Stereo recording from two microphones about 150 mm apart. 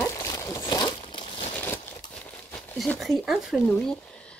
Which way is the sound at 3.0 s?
Centre (ahead or behind).